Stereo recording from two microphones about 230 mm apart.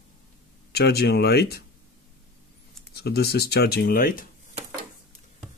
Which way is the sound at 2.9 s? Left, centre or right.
Left.